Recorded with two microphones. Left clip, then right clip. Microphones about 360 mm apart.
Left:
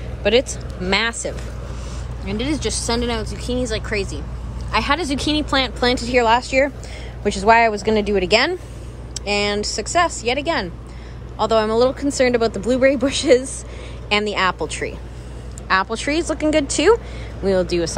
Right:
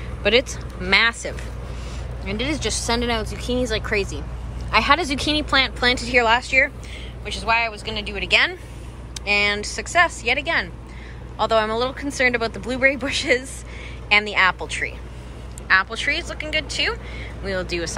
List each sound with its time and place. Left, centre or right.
0.2 s speech: centre
7.8 s speech: left
8.1 s speech: centre